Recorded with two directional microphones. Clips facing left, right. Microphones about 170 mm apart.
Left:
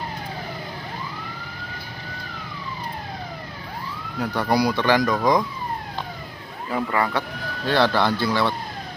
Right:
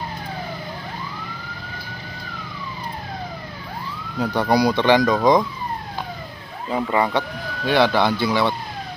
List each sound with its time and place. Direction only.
4.2 s speech: 20° right (ahead or behind)
6.7 s speech: 20° right (ahead or behind)